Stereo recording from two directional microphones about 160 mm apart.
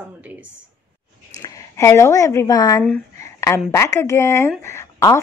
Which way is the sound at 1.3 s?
20° left (ahead or behind).